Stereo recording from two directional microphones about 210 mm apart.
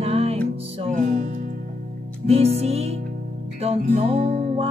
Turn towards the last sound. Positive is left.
turn(degrees=-30)  # may be behind; listen again after turning